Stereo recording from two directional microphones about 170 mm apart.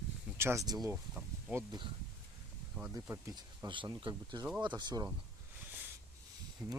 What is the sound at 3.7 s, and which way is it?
Speech, 30° right (ahead or behind).